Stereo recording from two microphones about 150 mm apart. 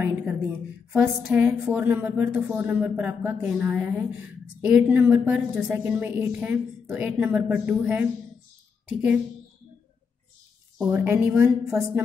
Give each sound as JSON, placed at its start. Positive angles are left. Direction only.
{"t": 0.9, "sound": "a woman's voice", "side_deg": -5}
{"t": 10.8, "sound": "a woman's voice", "side_deg": -10}